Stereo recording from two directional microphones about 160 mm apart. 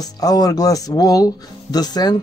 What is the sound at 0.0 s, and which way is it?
Speech, 25° left (ahead or behind).